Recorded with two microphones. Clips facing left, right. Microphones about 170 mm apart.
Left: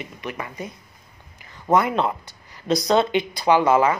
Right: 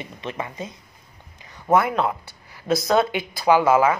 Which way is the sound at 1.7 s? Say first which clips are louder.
Even; 5° right (ahead or behind).